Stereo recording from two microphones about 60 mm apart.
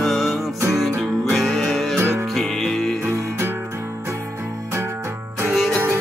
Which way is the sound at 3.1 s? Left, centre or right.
Right.